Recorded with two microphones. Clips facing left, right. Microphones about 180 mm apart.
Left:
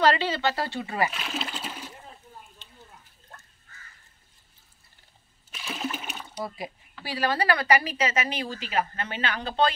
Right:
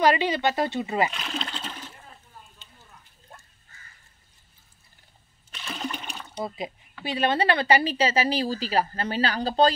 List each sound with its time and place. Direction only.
0.0 s speech: 15° right (ahead or behind)
1.1 s speech: 5° left (ahead or behind)
5.5 s splash: 5° left (ahead or behind)
6.3 s speech: 20° right (ahead or behind)